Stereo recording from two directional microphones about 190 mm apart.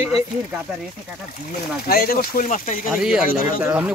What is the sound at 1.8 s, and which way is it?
Speech, 55° left (ahead or behind).